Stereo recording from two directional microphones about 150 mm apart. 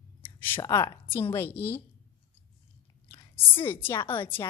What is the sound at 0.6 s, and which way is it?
A woman's voice, 20° left (ahead or behind).